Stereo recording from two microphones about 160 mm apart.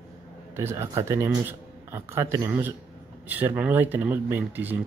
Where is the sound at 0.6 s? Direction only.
15° right (ahead or behind).